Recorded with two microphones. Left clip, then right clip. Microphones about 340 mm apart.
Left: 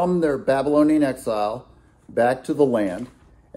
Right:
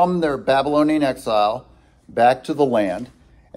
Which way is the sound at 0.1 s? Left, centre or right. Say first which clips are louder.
Right 2 dB; centre.